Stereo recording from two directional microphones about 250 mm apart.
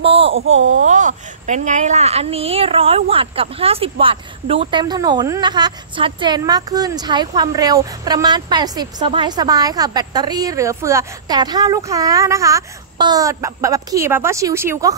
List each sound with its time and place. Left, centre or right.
0.0 s a sound: right
0.3 s speech: right
0.8 s speech: right; by 15.0 s centre